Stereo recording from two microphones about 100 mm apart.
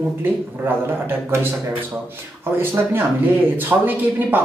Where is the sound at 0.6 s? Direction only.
20° right (ahead or behind).